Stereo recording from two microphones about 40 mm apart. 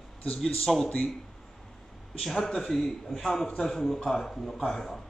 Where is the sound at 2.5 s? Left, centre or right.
Centre.